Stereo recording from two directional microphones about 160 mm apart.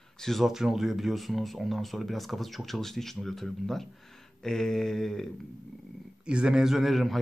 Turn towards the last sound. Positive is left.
turn(degrees=0)  # may be behind; listen again after turning